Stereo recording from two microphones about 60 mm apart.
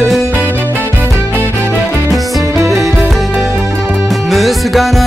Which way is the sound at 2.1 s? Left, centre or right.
Centre.